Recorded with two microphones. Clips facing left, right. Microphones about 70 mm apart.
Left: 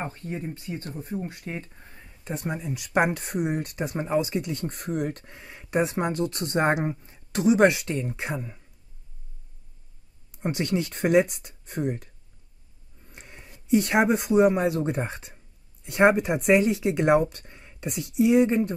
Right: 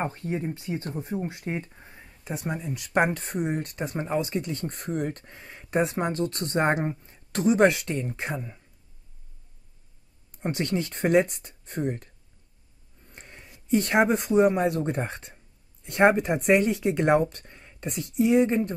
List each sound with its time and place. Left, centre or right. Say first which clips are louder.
0.0 s speech: right 3 dB; right
1.7 s speech: right 1 dB; centre
10.3 s speech: left 1 dB; centre
13.0 s a sound: even; centre
13.7 s speech: left 1 dB; centre